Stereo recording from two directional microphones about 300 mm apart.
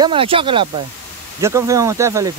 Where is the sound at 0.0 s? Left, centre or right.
Centre.